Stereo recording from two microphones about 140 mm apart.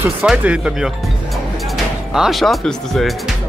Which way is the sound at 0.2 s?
10° right (ahead or behind).